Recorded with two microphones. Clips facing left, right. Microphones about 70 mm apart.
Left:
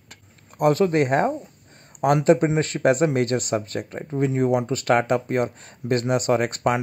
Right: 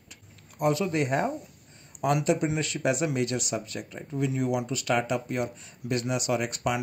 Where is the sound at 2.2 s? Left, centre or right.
Left.